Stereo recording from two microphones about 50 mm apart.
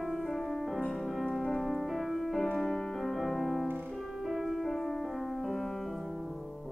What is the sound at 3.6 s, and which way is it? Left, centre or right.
Music, right.